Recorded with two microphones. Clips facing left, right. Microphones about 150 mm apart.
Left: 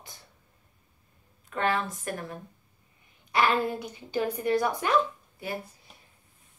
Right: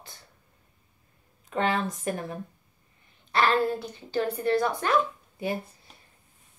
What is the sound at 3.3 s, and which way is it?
A woman's voice, 10° left (ahead or behind).